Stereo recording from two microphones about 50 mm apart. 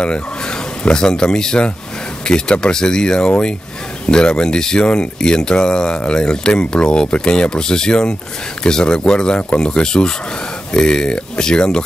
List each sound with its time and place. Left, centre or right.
0.8 s speech: centre